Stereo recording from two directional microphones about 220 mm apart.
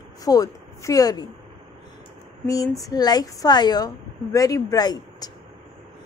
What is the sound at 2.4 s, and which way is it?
A woman's voice, 15° left (ahead or behind).